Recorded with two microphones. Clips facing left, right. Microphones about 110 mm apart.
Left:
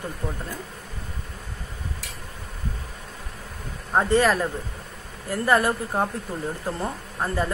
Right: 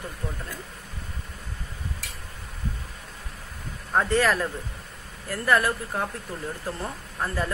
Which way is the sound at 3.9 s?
20° left (ahead or behind).